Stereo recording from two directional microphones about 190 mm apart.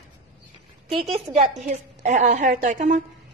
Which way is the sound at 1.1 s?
30° right (ahead or behind).